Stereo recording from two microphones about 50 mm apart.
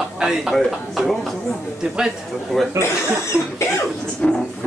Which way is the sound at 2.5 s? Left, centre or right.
Centre.